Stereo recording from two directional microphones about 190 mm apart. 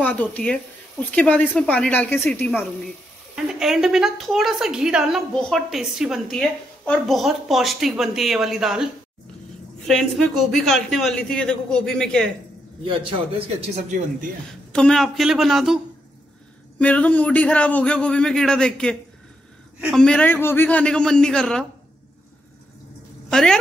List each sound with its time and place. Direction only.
0.0 s a woman's voice: 10° left (ahead or behind)
9.8 s a woman's voice: 5° left (ahead or behind)
13.6 s speech: 35° right (ahead or behind)
14.7 s a woman's voice: 5° left (ahead or behind)
23.3 s a woman's voice: 5° left (ahead or behind)